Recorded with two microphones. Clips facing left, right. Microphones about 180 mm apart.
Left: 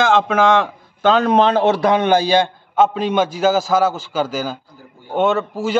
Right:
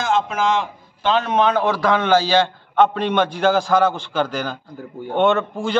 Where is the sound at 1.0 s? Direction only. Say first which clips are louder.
Left 4 dB; 35° left (ahead or behind).